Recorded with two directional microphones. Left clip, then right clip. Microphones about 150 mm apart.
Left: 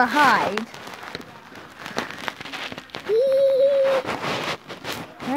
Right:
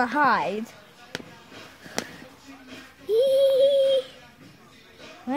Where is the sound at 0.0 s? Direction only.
15° right (ahead or behind).